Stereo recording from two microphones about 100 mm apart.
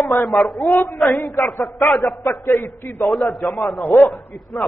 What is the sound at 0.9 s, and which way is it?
A man's voice, centre (ahead or behind).